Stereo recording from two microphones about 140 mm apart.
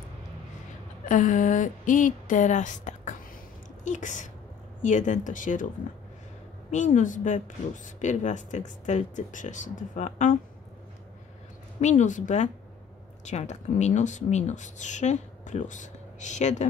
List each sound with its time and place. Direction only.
1.0 s a woman's voice: 65° left (ahead or behind)
6.7 s a woman's voice: 65° left (ahead or behind)
11.8 s a woman's voice: 60° left (ahead or behind)